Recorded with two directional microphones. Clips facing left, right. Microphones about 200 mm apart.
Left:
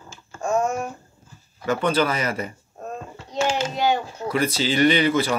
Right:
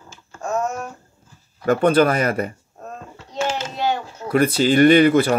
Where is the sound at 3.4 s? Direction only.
10° left (ahead or behind).